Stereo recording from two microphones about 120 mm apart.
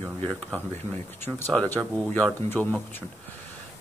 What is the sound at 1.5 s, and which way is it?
Speech, 10° left (ahead or behind).